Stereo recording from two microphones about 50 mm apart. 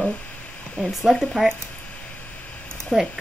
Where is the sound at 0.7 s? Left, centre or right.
Centre.